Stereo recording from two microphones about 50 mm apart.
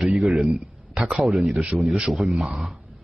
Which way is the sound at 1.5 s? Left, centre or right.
Right.